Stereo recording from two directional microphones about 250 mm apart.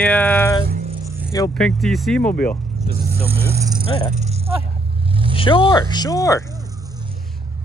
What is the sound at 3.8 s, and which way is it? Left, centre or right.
Speech, centre.